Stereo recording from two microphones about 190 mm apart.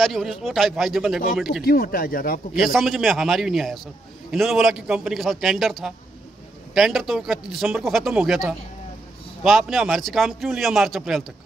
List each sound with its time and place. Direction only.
0.0 s a man's voice: centre (ahead or behind)
1.6 s speech: 50° left (ahead or behind)
2.6 s a man's voice: centre (ahead or behind)